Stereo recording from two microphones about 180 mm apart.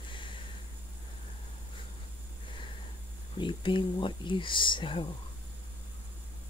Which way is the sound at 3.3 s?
25° left (ahead or behind).